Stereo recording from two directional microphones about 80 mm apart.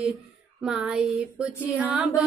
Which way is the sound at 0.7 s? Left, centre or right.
Centre.